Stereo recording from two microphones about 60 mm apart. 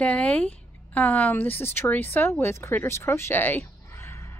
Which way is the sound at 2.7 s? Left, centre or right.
Left.